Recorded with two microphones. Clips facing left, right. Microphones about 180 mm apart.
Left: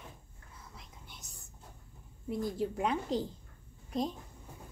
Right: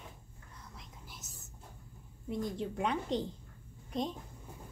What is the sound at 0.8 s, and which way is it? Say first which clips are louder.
Whispering: right 1 dB; centre (ahead or behind).